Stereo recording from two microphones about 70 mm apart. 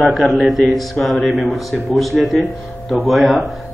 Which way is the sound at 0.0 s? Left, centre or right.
Centre.